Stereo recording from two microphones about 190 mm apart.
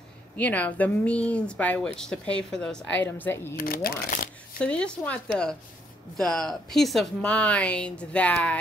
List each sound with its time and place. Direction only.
0.4 s speech: 10° left (ahead or behind)
3.5 s speech: 50° left (ahead or behind)
4.6 s speech: 5° left (ahead or behind)